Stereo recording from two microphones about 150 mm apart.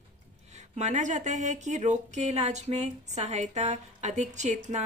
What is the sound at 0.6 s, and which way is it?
Speech, 50° right (ahead or behind).